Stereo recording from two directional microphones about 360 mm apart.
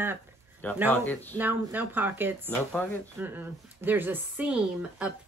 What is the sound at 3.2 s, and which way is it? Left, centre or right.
A woman's voice, centre.